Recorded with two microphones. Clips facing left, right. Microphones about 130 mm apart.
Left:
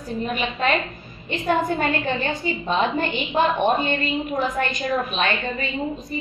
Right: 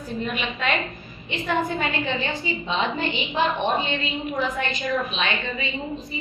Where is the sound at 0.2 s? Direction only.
40° left (ahead or behind).